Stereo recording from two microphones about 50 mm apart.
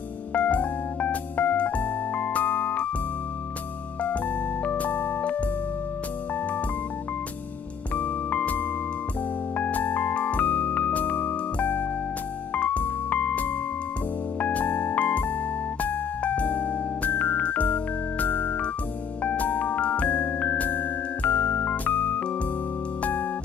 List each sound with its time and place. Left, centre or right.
0.3 s music: left
4.6 s organ: left
7.9 s music: left
18.2 s keyboard: left
19.2 s music: left